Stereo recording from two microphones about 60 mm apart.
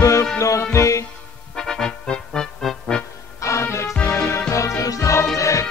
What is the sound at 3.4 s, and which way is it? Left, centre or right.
Music, left.